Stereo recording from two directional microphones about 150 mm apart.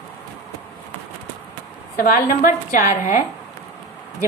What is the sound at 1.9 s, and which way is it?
A woman's voice, 70° left (ahead or behind).